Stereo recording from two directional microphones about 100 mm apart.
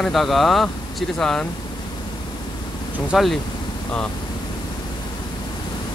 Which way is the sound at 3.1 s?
Centre (ahead or behind).